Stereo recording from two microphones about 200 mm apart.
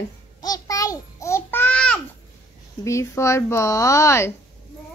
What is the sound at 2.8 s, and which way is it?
A woman's voice, 15° left (ahead or behind).